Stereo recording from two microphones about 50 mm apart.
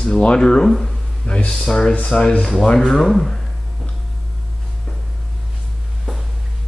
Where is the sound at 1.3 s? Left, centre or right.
Centre.